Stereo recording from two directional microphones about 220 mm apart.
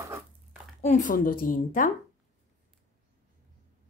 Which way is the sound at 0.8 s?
35° left (ahead or behind).